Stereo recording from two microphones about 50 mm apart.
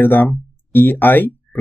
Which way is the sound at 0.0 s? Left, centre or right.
Left.